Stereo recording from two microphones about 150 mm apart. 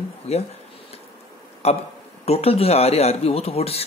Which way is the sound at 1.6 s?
45° left (ahead or behind).